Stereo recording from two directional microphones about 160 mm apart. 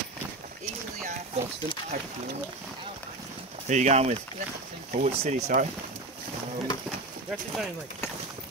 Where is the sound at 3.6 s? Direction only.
45° right (ahead or behind).